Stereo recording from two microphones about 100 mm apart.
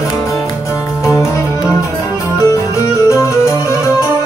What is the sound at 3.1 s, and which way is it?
Music, 30° left (ahead or behind).